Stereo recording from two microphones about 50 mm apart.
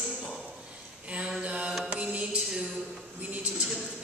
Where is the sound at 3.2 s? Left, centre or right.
Right.